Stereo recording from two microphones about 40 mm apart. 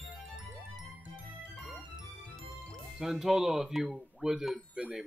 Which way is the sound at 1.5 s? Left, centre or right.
Centre.